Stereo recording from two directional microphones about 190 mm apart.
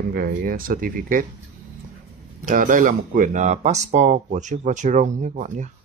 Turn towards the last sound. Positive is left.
turn(degrees=-40)  # may be behind; listen again after turning